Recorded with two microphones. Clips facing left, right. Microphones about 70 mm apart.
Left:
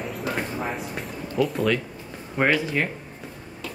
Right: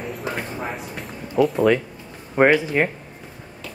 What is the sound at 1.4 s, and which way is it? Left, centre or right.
Speech, centre.